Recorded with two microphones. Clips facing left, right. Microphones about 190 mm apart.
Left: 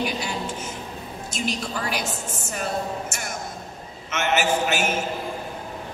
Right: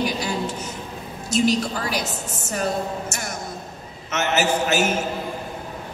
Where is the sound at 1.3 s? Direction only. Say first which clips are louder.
Right 9 dB; 40° right (ahead or behind).